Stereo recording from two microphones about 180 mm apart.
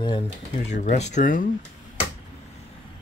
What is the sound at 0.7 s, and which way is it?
Speech, 40° left (ahead or behind).